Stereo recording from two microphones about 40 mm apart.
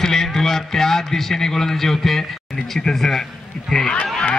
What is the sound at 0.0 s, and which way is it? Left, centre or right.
A man's voice, centre.